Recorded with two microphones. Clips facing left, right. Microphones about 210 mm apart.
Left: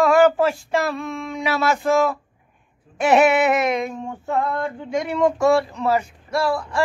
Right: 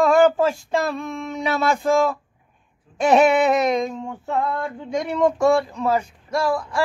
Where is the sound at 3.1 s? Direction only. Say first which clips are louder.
Even; 5° left (ahead or behind).